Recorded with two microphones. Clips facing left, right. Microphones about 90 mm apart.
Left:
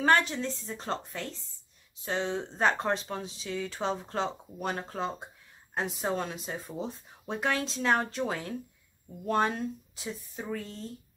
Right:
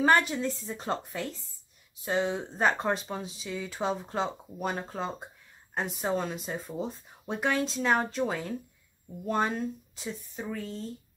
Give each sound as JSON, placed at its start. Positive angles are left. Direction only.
{"t": 0.0, "sound": "a woman's voice", "side_deg": -5}